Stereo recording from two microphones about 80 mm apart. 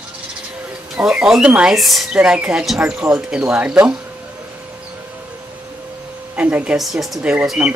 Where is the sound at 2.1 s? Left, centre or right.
Centre.